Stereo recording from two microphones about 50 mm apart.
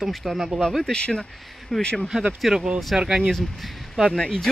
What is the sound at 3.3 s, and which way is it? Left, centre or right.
Speech, centre.